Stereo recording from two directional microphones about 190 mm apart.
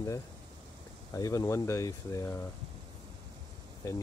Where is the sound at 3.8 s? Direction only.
15° left (ahead or behind).